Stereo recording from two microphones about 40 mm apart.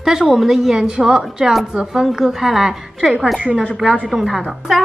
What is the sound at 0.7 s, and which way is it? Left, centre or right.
A woman's voice, centre.